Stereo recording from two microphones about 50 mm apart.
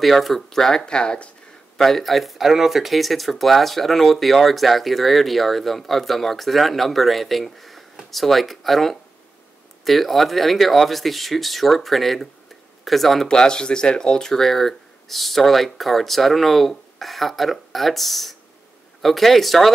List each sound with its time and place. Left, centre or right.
0.0 s speech: centre
1.8 s speech: centre
13.4 s speech: centre